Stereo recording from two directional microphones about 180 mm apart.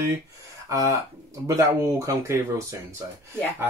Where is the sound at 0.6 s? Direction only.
15° right (ahead or behind).